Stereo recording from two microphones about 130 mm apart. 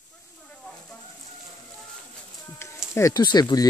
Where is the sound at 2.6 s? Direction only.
20° left (ahead or behind).